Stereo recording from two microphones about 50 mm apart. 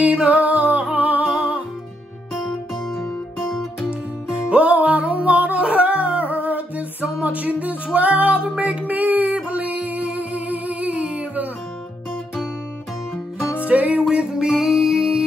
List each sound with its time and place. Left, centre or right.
0.0 s music: right
4.5 s music: right
13.7 s music: right; by 15.2 s centre